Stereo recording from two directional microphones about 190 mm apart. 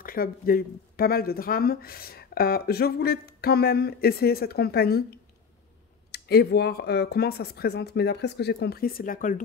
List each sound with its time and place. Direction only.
0.0 s speech: 50° left (ahead or behind)